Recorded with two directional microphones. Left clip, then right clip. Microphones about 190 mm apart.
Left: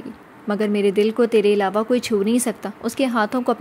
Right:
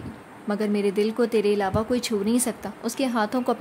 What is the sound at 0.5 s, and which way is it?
Speech, 20° left (ahead or behind).